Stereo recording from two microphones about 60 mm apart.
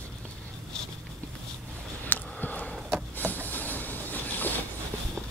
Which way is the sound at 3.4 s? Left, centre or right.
Left.